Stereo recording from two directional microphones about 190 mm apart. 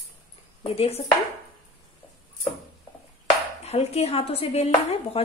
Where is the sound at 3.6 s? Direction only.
35° left (ahead or behind).